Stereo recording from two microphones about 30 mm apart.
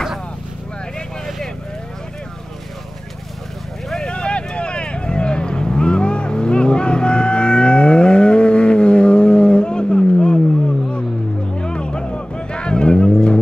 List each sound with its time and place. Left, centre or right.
4.1 s vehicle: left
11.6 s vehicle: left